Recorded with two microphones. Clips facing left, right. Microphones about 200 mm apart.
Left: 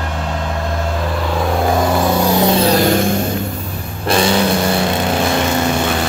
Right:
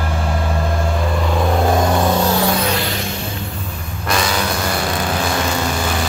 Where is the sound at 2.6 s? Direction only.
40° left (ahead or behind).